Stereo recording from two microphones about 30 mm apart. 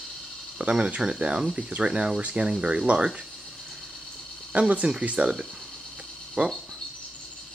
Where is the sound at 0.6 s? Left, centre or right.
Right.